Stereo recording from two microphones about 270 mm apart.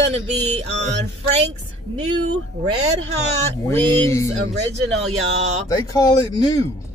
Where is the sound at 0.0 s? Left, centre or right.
Right.